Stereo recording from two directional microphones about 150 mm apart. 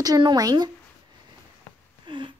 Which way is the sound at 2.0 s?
30° right (ahead or behind).